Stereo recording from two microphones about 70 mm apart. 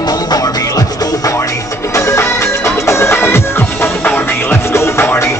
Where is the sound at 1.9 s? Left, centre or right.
Left.